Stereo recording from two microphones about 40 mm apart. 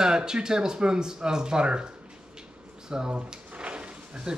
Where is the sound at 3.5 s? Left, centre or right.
Right.